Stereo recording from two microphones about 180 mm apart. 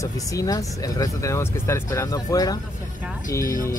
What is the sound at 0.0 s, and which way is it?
Speech, 20° left (ahead or behind).